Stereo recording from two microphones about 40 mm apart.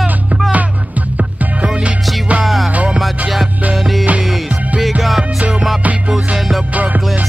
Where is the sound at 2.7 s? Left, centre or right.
Right.